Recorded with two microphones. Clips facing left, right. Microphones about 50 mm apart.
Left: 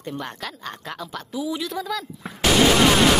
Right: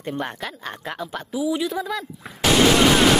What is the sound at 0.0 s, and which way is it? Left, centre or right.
Speech, right.